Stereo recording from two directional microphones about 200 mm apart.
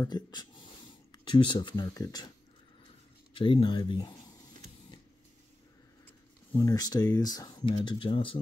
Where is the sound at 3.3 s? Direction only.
25° left (ahead or behind).